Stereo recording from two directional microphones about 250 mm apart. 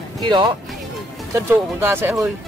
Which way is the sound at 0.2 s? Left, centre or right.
Centre.